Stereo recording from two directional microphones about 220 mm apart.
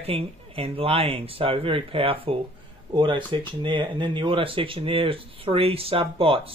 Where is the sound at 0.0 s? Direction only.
25° right (ahead or behind).